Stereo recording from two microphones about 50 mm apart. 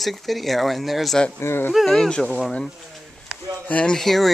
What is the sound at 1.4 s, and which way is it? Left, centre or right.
Speech, left.